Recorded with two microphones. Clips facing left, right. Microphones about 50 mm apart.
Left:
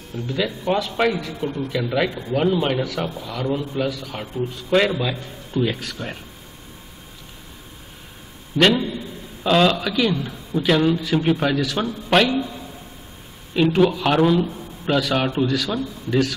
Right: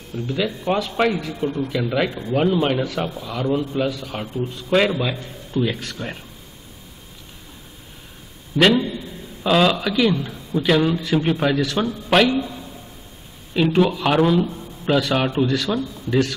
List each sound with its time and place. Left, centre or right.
0.4 s a man's voice: centre
2.8 s a man's voice: centre
8.5 s a man's voice: centre